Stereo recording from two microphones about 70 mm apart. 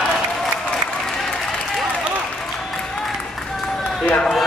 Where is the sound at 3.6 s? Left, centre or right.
Centre.